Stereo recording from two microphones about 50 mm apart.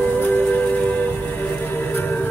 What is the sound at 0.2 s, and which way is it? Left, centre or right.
Music, left.